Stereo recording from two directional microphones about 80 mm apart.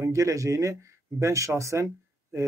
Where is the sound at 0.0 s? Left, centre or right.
Right.